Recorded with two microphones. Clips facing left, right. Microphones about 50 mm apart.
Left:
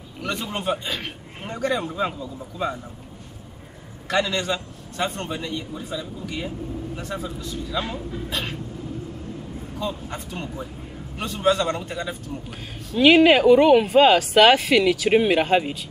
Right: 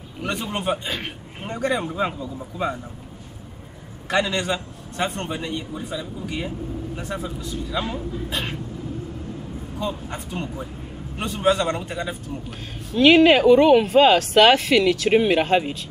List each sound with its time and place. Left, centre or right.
0.2 s a man's voice: centre
4.1 s a man's voice: centre
9.8 s a man's voice: centre
11.1 s a man's voice: right
12.4 s speech: centre